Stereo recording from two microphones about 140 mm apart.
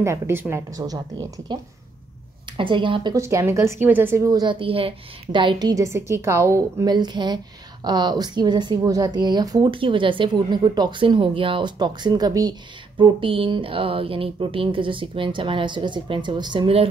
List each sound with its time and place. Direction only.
0.0 s a woman's voice: 20° right (ahead or behind); by 3.2 s 35° right (ahead or behind)
3.2 s a woman's voice: 20° right (ahead or behind)
4.3 s a woman's voice: 30° right (ahead or behind)